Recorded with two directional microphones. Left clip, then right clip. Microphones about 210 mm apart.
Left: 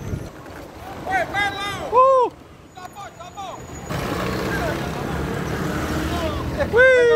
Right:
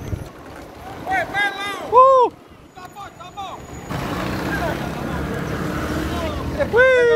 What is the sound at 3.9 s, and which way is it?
Vehicle, 40° left (ahead or behind).